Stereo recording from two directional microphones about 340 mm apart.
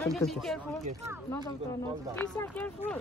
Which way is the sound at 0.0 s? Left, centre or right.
Centre.